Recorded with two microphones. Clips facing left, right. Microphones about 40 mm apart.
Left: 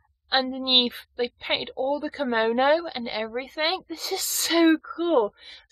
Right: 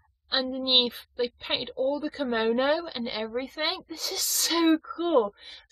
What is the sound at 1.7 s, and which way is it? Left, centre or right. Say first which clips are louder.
Speech: left 1 dB; centre.